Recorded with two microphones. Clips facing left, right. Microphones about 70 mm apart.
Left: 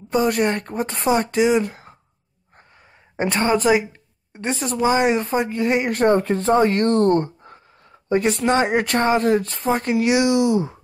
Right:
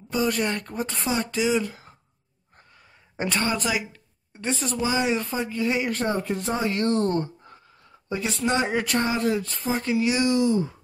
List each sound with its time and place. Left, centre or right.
0.1 s speech: left
3.2 s speech: left
6.1 s speech: left
8.5 s speech: left
9.8 s speech: left